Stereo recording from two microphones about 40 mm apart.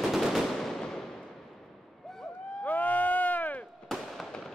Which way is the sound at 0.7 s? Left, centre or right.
Centre.